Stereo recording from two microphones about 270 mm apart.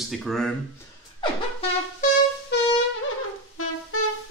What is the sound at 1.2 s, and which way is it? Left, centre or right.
Wind instrument, left.